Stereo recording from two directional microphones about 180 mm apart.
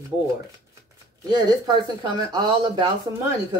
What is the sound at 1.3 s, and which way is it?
Speech, 25° right (ahead or behind).